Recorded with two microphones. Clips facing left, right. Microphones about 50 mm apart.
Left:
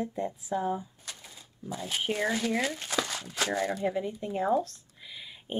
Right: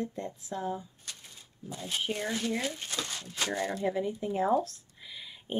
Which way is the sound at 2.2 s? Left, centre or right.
Left.